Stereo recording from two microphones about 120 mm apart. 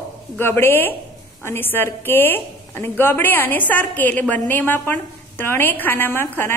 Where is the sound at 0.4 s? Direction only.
20° left (ahead or behind).